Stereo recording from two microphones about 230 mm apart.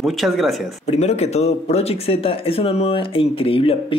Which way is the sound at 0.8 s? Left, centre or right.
Left.